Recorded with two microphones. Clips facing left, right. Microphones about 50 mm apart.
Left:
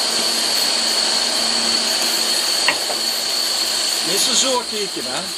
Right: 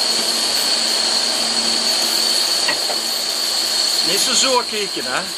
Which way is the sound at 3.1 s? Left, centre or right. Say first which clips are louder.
Even; left.